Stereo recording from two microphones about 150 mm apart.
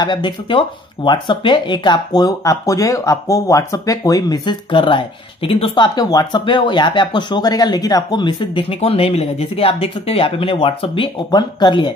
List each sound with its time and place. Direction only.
0.0 s speech: 30° left (ahead or behind)